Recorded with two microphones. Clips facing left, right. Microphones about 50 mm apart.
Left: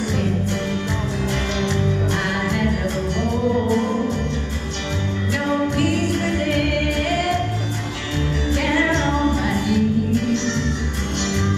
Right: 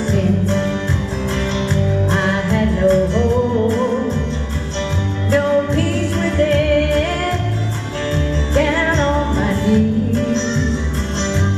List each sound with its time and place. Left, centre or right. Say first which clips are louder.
1.6 s music: right 3 dB; right
5.3 s music: right 6 dB; centre
8.5 s music: right 4 dB; centre